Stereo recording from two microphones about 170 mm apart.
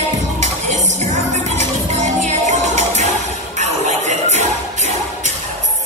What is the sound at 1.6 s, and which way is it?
Music, 45° right (ahead or behind).